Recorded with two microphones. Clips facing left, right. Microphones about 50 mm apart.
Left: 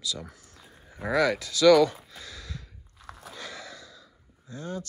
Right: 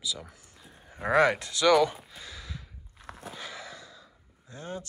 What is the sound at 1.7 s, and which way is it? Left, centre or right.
Speech, centre.